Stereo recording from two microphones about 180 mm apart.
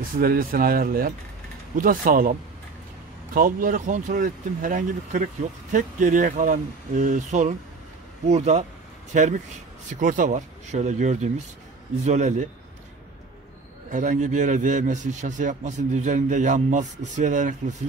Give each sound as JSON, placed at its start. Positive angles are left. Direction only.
{"t": 0.2, "sound": "speech", "side_deg": -55}
{"t": 3.3, "sound": "speech", "side_deg": -50}
{"t": 13.8, "sound": "speech", "side_deg": -45}